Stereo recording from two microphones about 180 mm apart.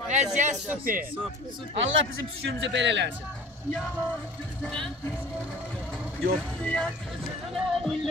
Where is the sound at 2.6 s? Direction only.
80° right.